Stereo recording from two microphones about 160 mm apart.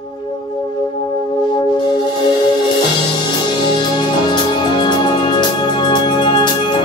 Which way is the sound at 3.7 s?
30° left (ahead or behind).